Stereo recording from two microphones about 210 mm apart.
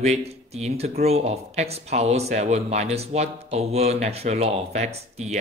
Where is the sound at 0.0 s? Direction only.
30° right (ahead or behind).